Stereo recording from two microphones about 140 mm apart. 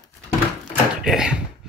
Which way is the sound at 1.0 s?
5° right (ahead or behind).